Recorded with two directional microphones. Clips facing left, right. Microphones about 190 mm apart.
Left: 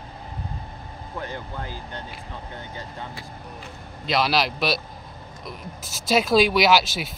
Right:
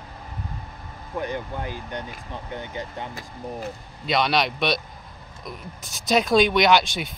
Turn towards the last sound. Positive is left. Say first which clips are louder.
# even
turn(degrees=5)  # may be behind; listen again after turning